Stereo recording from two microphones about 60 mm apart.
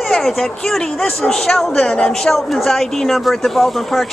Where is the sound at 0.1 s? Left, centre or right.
Centre.